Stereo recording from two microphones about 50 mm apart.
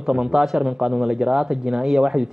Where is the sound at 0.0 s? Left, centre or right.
Centre.